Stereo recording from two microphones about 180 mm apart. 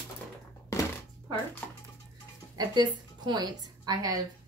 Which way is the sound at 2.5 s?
25° right (ahead or behind).